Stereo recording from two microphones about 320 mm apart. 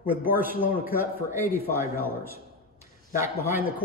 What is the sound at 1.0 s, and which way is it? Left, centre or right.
Speech, centre.